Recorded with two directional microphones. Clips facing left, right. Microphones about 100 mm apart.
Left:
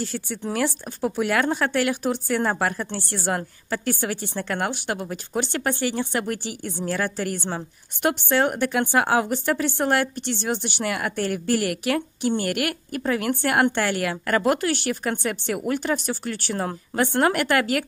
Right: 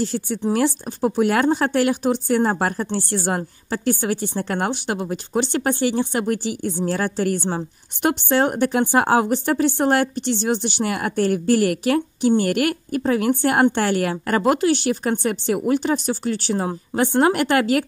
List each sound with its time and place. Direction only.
0.0 s a woman's voice: 30° right (ahead or behind)
15.6 s a woman's voice: 25° right (ahead or behind)